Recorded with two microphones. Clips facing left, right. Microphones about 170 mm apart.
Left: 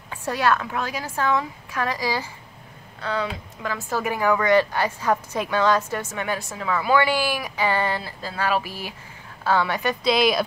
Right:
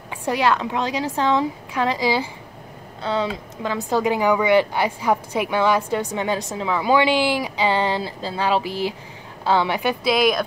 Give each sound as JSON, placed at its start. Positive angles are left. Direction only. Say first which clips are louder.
{"t": 0.1, "sound": "a woman's voice", "louder": "right 2 dB", "side_deg": -15}
{"t": 10.1, "sound": "speech", "louder": "right 1 dB", "side_deg": 0}